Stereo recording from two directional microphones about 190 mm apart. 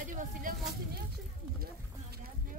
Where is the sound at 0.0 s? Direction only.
40° right (ahead or behind).